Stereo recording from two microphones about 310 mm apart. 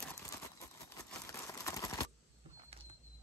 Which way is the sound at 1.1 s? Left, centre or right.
Centre.